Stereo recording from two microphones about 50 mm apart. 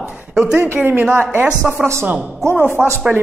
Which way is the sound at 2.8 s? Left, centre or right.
Right.